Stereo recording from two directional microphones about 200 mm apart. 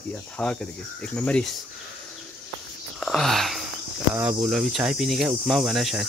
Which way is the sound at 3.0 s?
Centre (ahead or behind).